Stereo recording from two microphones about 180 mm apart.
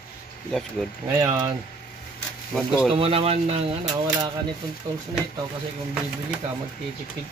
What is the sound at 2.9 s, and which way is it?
Speech, 30° right (ahead or behind).